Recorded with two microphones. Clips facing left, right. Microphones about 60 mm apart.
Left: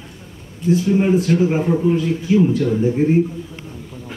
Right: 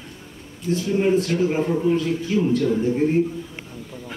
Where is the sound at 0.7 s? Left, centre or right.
Centre.